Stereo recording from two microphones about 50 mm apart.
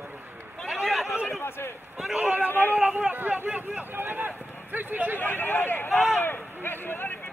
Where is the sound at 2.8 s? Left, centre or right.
Right.